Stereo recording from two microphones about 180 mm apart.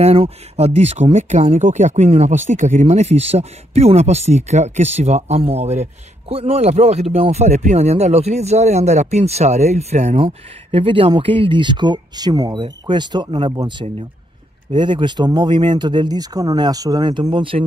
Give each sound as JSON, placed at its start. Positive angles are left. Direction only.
{"t": 0.0, "sound": "speech", "side_deg": -35}